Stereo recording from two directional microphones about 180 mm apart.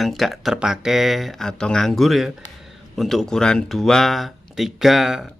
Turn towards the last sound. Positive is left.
turn(degrees=0)  # may be behind; listen again after turning